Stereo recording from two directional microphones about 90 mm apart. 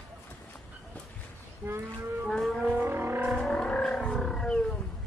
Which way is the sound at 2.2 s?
5° left (ahead or behind).